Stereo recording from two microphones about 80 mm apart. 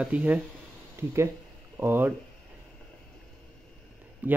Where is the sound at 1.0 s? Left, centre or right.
Right.